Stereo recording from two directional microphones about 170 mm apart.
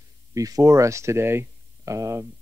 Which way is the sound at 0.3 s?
20° right (ahead or behind).